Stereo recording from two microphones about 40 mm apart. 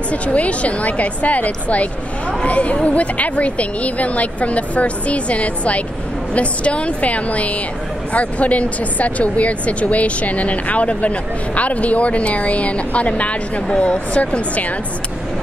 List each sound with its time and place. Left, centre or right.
0.1 s speech: left